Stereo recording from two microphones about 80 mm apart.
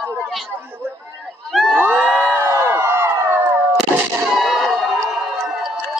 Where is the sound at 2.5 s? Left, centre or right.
Right.